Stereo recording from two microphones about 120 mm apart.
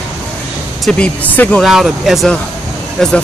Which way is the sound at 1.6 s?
5° right (ahead or behind).